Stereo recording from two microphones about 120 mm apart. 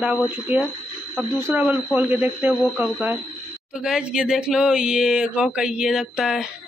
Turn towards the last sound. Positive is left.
turn(degrees=-5)  # may be behind; listen again after turning